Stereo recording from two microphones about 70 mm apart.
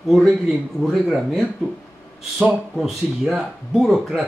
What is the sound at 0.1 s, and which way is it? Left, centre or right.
Speech, centre.